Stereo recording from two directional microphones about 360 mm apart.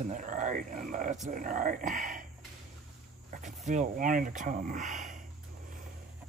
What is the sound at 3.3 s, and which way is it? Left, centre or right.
Walk, right.